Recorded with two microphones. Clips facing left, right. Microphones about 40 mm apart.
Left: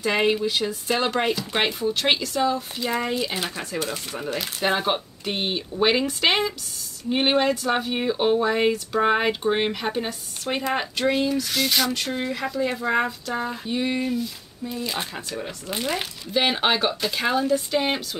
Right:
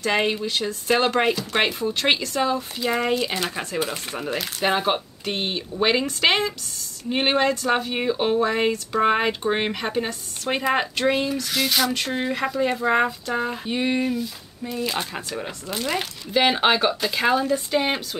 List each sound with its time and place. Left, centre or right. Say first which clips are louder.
0.1 s speech: left 1 dB; centre
0.8 s speech: right 4 dB; centre
4.2 s speech: right 1 dB; centre
10.5 s speech: right 3 dB; centre
12.1 s speech: right 2 dB; centre
14.0 s speech: right 1 dB; centre
16.0 s speech: right 3 dB; centre